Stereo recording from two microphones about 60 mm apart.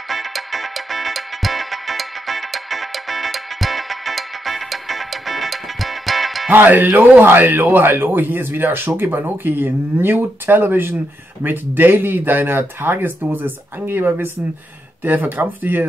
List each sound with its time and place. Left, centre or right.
0.1 s music: centre
6.5 s speech: right